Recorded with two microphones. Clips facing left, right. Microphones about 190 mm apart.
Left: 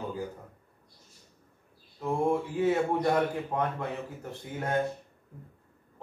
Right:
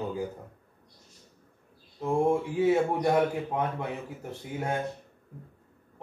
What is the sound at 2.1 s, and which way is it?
A man's voice, 10° right (ahead or behind).